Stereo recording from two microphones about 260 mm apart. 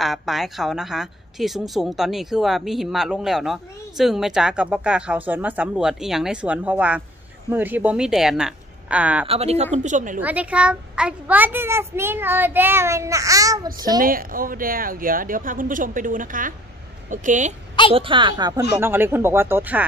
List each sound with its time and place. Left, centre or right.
0.0 s a woman's voice: centre
9.3 s a woman's voice: right
10.2 s a child's voice: centre
14.0 s a woman's voice: right; by 19.8 s centre